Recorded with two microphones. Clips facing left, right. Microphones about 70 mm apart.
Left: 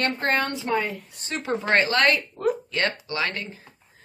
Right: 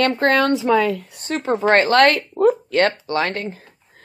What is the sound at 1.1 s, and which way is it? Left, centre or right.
Speech, right.